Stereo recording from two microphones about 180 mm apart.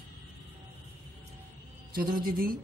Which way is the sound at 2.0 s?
50° right (ahead or behind).